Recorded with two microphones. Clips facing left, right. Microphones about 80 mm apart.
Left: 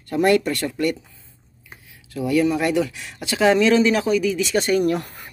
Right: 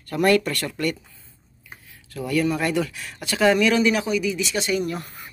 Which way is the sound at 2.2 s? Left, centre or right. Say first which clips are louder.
Left 3 dB; centre.